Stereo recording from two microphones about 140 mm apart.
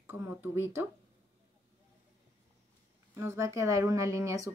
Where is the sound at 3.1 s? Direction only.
20° right (ahead or behind).